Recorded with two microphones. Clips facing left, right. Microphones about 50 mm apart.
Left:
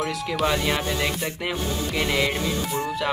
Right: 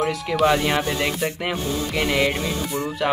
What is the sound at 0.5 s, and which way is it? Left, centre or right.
Music, centre.